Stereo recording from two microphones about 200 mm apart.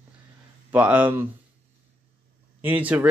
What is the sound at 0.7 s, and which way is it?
Speech, 10° right (ahead or behind).